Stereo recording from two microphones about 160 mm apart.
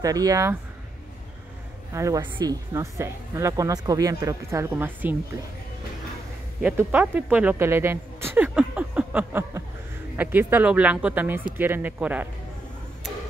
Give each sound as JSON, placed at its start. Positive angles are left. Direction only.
{"t": 0.0, "sound": "speech", "side_deg": -20}
{"t": 2.0, "sound": "speech", "side_deg": -20}
{"t": 6.6, "sound": "speech", "side_deg": -10}